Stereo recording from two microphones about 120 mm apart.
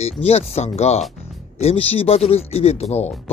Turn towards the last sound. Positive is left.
turn(degrees=60)  # may be behind; listen again after turning